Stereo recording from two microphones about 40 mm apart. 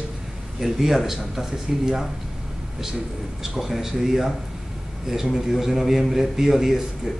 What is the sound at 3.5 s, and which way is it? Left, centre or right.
A man's voice, centre.